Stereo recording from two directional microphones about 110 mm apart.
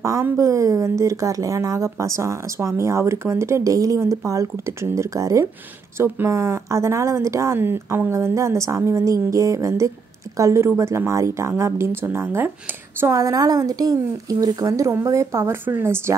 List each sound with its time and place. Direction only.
0.0 s a woman's voice: 30° right (ahead or behind)